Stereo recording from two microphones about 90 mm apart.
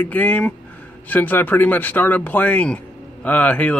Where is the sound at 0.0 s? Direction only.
15° left (ahead or behind).